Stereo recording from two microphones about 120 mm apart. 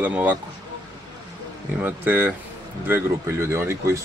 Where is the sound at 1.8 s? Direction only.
15° right (ahead or behind).